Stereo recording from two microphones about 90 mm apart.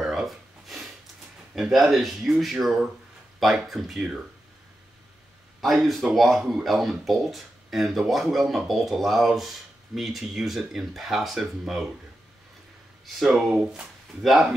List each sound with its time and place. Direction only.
0.0 s a sound: centre (ahead or behind)
1.5 s speech: 5° right (ahead or behind)
5.6 s speech: centre (ahead or behind)
13.0 s speech: centre (ahead or behind)